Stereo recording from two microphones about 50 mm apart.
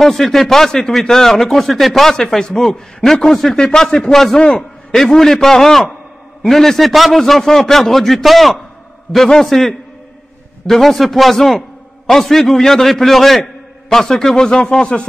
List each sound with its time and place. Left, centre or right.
0.0 s a man's voice: centre